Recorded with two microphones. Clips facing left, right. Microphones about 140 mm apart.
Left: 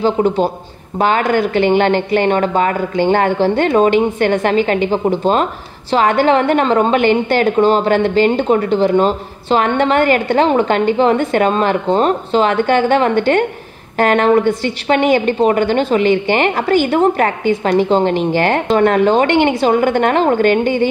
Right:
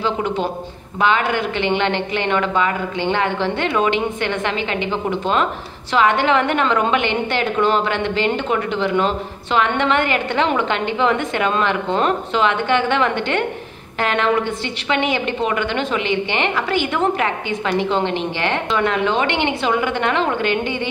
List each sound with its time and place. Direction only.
0.0 s a woman's voice: 35° left (ahead or behind)